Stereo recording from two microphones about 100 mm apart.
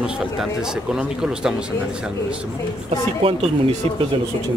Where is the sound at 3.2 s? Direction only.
65° right (ahead or behind).